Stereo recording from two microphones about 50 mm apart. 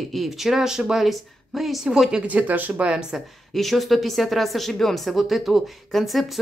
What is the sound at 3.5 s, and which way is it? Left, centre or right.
Speech, centre.